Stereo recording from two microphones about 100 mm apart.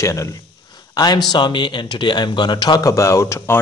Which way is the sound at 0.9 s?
40° left (ahead or behind).